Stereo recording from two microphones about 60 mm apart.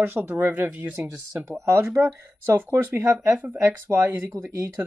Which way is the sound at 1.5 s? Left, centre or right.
Right.